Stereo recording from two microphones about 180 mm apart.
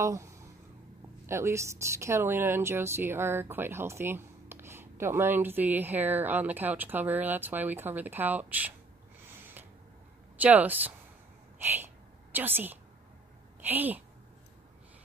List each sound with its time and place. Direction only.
0.0 s a woman's voice: 15° right (ahead or behind)
10.4 s a woman's voice: 10° right (ahead or behind)
11.5 s a sound: 10° right (ahead or behind)
13.6 s a woman's voice: 10° right (ahead or behind)